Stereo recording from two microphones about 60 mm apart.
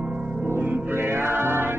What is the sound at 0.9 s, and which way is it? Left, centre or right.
Music, right.